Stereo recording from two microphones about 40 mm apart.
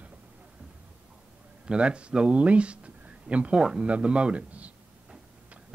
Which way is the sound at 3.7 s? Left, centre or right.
Right.